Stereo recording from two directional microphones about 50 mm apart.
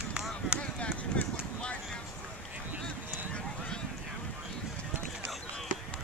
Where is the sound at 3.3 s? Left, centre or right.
Centre.